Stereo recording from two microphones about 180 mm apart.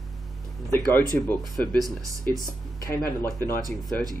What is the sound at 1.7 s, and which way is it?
Speech, 20° right (ahead or behind).